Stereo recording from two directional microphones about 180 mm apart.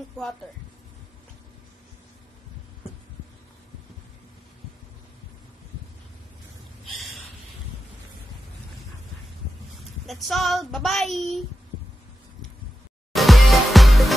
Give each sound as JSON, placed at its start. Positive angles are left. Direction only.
{"t": 6.8, "sound": "snort", "side_deg": 0}
{"t": 10.0, "sound": "speech", "side_deg": 0}
{"t": 13.1, "sound": "music", "side_deg": 0}